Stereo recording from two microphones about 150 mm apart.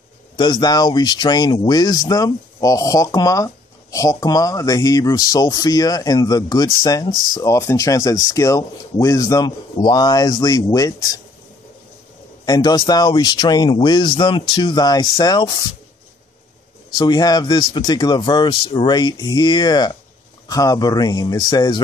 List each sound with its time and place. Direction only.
0.4 s speech: 30° left (ahead or behind)
12.4 s speech: 25° left (ahead or behind)
16.9 s speech: 25° left (ahead or behind)